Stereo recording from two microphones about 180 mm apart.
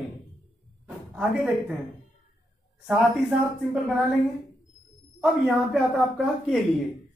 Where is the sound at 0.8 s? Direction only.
5° right (ahead or behind).